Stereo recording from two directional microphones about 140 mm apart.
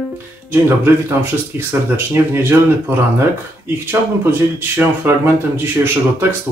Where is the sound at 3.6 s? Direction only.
15° right (ahead or behind).